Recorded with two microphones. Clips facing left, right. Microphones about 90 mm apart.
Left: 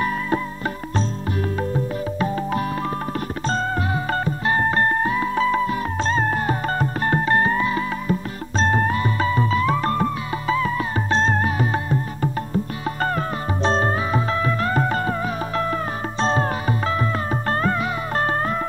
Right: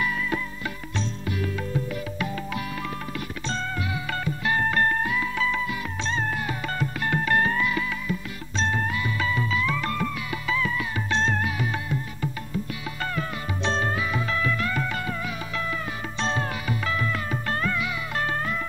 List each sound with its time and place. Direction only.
0.0 s music: 40° left (ahead or behind)